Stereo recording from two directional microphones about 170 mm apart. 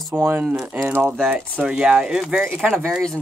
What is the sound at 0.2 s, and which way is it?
Speech, 15° right (ahead or behind).